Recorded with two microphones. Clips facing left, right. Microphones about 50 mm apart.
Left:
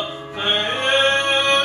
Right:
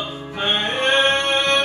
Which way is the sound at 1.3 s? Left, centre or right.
Left.